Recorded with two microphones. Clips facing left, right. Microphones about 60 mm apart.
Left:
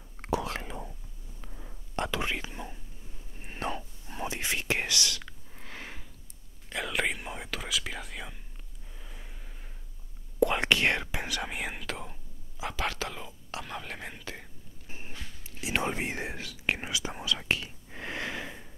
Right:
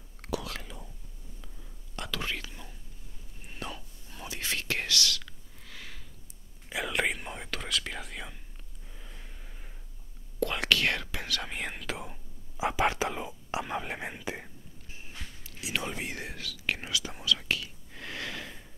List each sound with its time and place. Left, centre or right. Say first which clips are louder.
0.2 s whispering: left 4 dB; left
1.4 s a sound: left 4 dB; left
2.0 s whispering: even; left
3.3 s whispering: left 6 dB; left
4.4 s speech: left 1 dB; centre
5.5 s sniff: left 5 dB; left
6.7 s whispering: right 1 dB; centre
8.8 s gasp: left 1 dB; centre
10.4 s whispering: left 3 dB; left
11.5 s whispering: even; centre
12.5 s whispering: right 6 dB; right
14.9 s whispering: left 2 dB; left; by 18.7 s centre